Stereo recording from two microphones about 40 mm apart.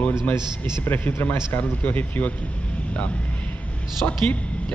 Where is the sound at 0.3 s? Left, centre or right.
Left.